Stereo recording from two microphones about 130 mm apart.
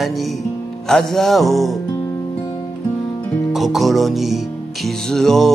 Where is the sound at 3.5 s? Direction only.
Centre (ahead or behind).